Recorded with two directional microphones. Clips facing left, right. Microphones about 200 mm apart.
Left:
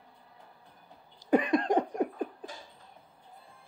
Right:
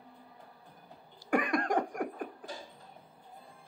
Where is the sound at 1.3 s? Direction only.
20° left (ahead or behind).